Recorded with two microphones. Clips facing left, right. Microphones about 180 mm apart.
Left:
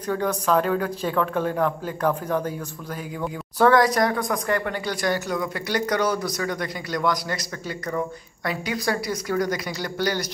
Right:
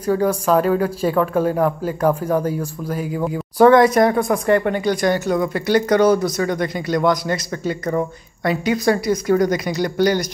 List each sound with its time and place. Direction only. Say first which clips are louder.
0.0 s speech: right 6 dB; 10° right (ahead or behind)
3.2 s speech: right 7 dB; 20° right (ahead or behind)